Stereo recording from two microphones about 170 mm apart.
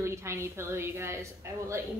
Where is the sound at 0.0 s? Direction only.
15° right (ahead or behind).